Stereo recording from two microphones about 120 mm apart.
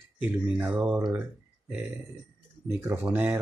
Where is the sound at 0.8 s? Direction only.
10° right (ahead or behind).